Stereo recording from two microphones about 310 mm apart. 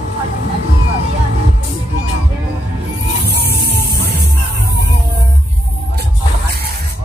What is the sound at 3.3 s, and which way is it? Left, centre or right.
Music, right.